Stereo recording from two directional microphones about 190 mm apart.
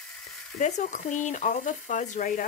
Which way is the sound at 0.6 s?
40° left (ahead or behind).